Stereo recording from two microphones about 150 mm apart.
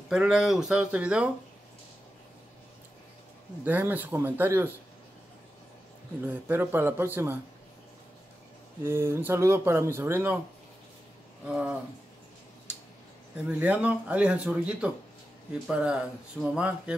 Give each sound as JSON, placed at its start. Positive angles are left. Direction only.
{"t": 0.1, "sound": "speech", "side_deg": -5}
{"t": 3.6, "sound": "speech", "side_deg": -10}
{"t": 6.2, "sound": "speech", "side_deg": -15}
{"t": 8.8, "sound": "speech", "side_deg": -15}
{"t": 11.4, "sound": "speech", "side_deg": -5}
{"t": 13.5, "sound": "speech", "side_deg": -10}